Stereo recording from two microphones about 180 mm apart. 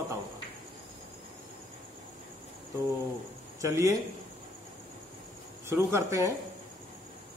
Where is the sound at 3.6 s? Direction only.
20° right (ahead or behind).